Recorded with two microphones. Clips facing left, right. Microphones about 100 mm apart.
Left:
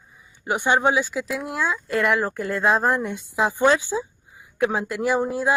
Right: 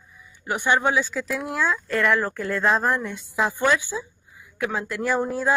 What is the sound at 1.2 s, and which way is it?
Speech, centre (ahead or behind).